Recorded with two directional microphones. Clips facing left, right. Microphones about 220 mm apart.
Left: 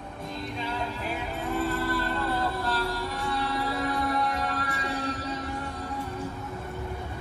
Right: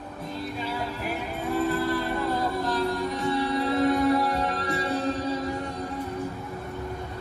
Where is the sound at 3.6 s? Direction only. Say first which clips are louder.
Right 7 dB; 25° right (ahead or behind).